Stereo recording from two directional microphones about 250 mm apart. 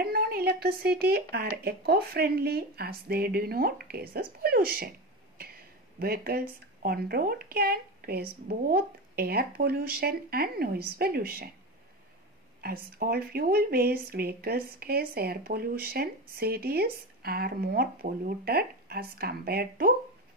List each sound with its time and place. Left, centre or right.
0.0 s speech: right
5.4 s a sound: right
6.8 s speech: right
12.6 s speech: right